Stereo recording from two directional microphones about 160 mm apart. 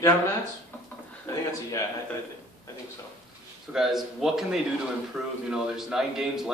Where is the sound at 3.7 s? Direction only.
Centre (ahead or behind).